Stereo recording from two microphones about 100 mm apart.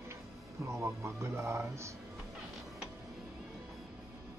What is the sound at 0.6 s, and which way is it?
Speech, 30° right (ahead or behind).